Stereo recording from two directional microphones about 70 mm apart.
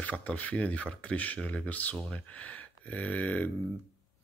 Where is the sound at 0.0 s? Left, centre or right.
Left.